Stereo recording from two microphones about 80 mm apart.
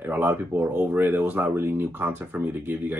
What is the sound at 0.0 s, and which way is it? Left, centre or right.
Speech, right.